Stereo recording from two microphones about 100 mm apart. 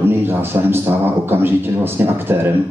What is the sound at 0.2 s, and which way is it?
A man's voice, 20° right (ahead or behind).